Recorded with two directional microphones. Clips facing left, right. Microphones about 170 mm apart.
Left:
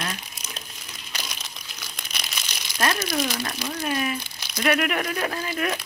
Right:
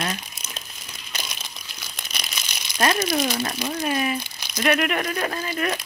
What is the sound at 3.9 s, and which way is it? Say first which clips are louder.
Speech: right 1 dB; 10° right (ahead or behind).